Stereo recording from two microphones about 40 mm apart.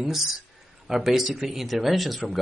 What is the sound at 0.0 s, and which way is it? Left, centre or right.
Speech, centre.